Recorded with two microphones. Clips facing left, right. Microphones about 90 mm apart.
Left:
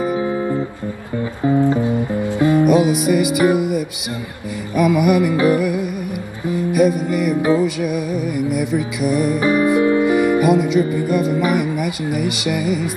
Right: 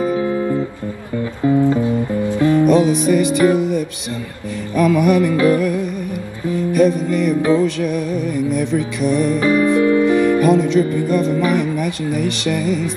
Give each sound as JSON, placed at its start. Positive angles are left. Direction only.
{"t": 0.0, "sound": "guitar", "side_deg": 20}
{"t": 1.6, "sound": "music", "side_deg": 20}